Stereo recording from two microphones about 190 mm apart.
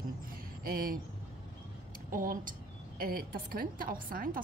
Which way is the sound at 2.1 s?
45° right (ahead or behind).